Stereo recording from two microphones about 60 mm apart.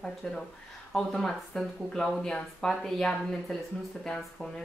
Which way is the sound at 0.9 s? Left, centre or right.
Centre.